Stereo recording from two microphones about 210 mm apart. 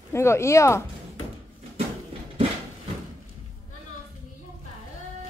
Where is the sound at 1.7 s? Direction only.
25° right (ahead or behind).